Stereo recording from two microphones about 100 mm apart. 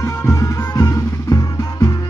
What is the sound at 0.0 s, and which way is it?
Music, 30° left (ahead or behind).